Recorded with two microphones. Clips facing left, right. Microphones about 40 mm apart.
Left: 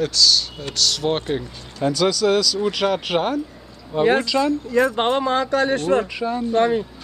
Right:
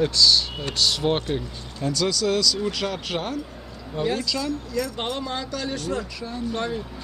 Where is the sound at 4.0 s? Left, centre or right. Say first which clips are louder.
Left 8 dB; left.